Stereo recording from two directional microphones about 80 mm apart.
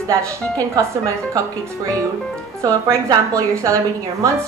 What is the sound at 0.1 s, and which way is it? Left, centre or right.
Speech, right.